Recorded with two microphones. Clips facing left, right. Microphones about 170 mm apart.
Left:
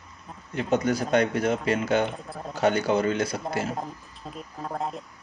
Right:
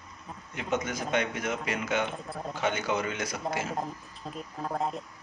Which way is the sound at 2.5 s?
35° left (ahead or behind).